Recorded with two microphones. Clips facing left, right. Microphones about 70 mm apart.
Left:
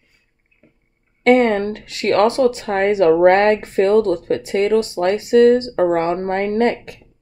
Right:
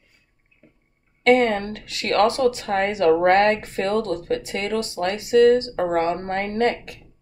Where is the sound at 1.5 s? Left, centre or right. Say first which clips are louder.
Left 7 dB; left.